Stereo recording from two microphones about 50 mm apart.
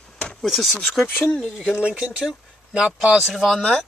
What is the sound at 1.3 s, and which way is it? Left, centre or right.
Speech, centre.